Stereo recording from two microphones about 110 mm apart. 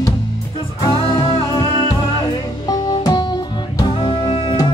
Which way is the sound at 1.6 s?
45° left (ahead or behind).